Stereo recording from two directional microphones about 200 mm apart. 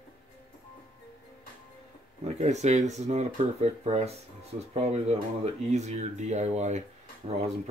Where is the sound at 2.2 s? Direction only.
35° right (ahead or behind).